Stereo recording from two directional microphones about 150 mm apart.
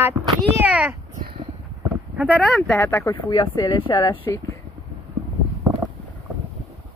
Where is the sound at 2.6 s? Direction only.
20° left (ahead or behind).